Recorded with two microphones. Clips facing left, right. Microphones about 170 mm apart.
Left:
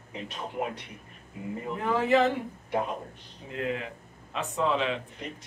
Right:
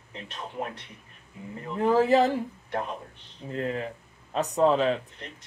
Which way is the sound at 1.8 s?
35° right (ahead or behind).